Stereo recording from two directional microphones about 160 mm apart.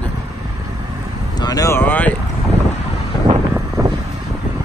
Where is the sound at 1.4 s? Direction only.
20° left (ahead or behind).